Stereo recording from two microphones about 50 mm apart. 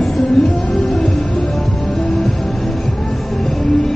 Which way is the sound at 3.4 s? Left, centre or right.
Centre.